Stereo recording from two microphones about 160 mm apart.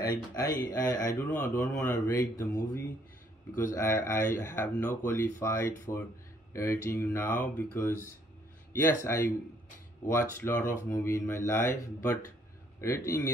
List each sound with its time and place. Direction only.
0.4 s speech: 20° left (ahead or behind)
3.5 s speech: 15° left (ahead or behind)